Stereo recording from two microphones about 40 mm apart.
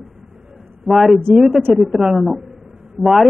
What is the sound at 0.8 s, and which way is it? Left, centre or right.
A man's voice, centre.